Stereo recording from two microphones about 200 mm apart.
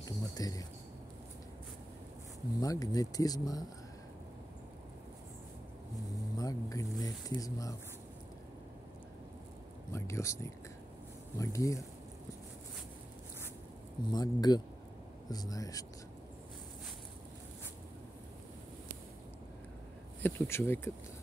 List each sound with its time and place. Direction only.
0.0 s a sound: 20° left (ahead or behind)
2.6 s speech: 20° left (ahead or behind)
6.3 s speech: 15° left (ahead or behind)
9.9 s speech: 15° left (ahead or behind)
14.1 s speech: 20° left (ahead or behind)
20.2 s speech: 10° left (ahead or behind)